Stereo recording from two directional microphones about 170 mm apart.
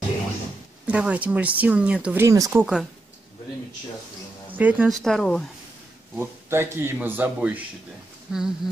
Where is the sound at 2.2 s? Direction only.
20° right (ahead or behind).